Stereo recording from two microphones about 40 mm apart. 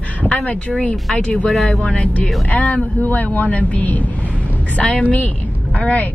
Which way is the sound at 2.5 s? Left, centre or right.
Left.